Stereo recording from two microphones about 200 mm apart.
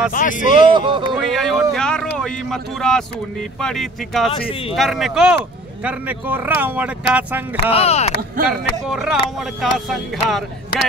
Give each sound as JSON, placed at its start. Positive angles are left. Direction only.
{"t": 0.1, "sound": "speech", "side_deg": 40}
{"t": 0.6, "sound": "speech", "side_deg": -25}
{"t": 1.1, "sound": "speech", "side_deg": 0}
{"t": 4.4, "sound": "speech", "side_deg": 30}
{"t": 4.7, "sound": "speech", "side_deg": 0}
{"t": 7.7, "sound": "speech", "side_deg": 30}
{"t": 8.5, "sound": "speech", "side_deg": -5}